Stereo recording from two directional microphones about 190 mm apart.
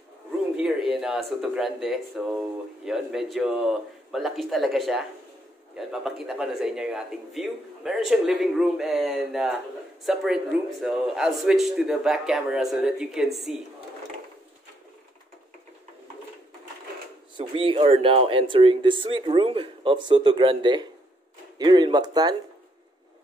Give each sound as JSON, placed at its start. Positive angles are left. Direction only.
{"t": 0.6, "sound": "speech", "side_deg": 0}
{"t": 17.4, "sound": "speech", "side_deg": -30}